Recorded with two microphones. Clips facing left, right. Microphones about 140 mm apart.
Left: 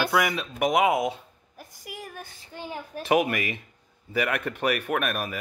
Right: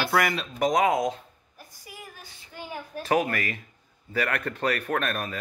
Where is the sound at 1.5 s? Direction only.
75° left (ahead or behind); by 2.4 s 55° left (ahead or behind).